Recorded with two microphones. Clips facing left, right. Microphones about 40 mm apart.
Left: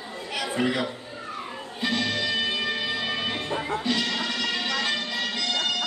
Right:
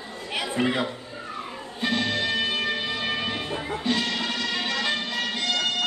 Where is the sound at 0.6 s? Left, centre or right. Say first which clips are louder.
Right 1 dB; right.